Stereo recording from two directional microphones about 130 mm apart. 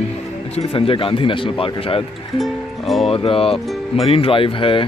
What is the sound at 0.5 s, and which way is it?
Speech, 50° left (ahead or behind).